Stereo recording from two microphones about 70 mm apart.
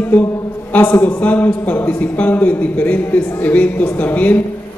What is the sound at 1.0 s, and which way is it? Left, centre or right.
Speech, left.